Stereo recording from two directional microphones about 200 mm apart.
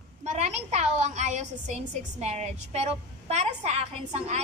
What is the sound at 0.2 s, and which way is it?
A woman's voice, 35° right (ahead or behind).